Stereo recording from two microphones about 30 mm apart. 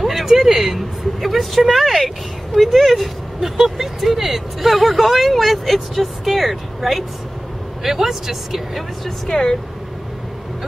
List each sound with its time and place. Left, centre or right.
0.0 s speech: centre
3.3 s speech: centre
9.3 s speech: left